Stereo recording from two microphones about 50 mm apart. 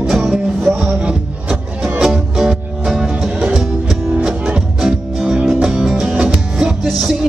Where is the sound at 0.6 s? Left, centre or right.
Centre.